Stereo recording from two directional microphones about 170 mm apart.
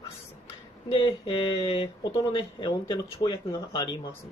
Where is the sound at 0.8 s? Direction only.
35° left (ahead or behind).